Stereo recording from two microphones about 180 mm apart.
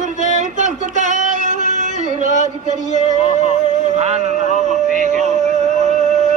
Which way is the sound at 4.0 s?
40° right (ahead or behind).